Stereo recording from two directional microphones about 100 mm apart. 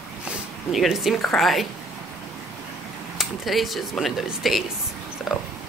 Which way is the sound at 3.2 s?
Centre (ahead or behind).